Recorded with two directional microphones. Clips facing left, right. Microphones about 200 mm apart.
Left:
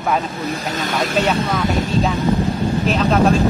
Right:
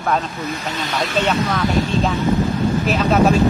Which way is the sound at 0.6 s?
45° left (ahead or behind).